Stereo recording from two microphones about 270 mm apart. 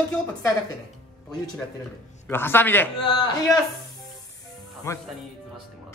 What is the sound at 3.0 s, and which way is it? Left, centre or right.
Speech, centre.